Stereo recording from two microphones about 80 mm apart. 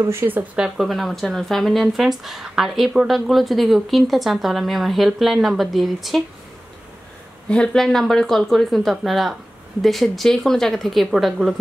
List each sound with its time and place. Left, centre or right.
0.0 s speech: right
0.6 s speech: centre
7.4 s speech: centre